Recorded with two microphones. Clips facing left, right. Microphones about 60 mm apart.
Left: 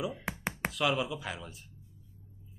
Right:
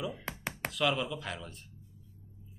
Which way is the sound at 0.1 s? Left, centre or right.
Centre.